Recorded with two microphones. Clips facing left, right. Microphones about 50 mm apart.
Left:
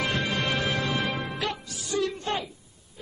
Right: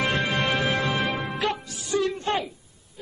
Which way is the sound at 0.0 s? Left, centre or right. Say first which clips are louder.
Right 3 dB; right.